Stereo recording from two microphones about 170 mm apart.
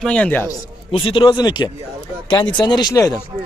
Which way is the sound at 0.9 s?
30° left (ahead or behind).